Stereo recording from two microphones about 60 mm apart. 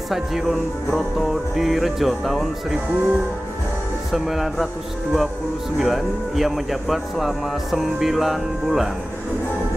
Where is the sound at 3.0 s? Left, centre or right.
Right.